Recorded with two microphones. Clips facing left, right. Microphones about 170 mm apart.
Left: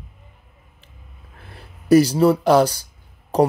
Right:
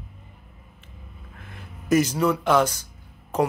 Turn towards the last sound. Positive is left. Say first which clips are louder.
# left 6 dB
turn(degrees=35)  # may be behind; listen again after turning